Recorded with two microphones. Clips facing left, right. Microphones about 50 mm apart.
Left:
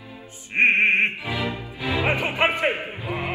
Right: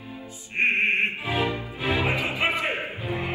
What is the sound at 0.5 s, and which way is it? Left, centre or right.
Music, left.